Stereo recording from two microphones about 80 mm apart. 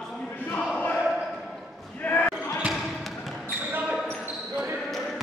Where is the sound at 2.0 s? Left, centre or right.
Centre.